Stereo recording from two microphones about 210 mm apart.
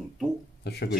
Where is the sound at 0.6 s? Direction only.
50° left (ahead or behind).